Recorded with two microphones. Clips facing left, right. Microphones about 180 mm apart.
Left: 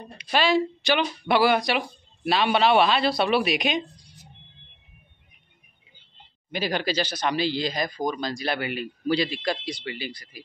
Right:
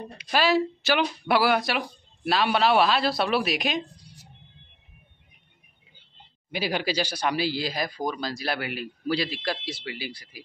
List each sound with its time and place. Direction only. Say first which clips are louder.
0.2 s speech: left 1 dB; 5° right (ahead or behind)
6.5 s speech: left 1 dB; 10° right (ahead or behind)